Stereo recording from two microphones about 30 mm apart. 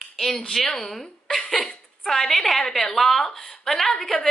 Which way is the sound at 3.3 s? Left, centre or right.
Left.